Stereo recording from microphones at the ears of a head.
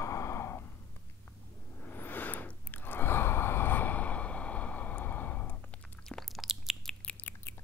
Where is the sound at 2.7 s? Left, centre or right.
Left.